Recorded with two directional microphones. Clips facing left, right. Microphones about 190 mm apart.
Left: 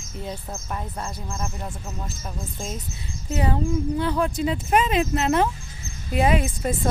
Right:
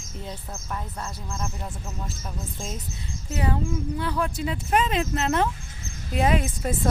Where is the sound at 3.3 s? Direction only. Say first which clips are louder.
Left 3 dB; 25° left (ahead or behind).